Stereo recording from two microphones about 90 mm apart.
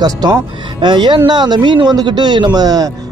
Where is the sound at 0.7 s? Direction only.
60° right (ahead or behind).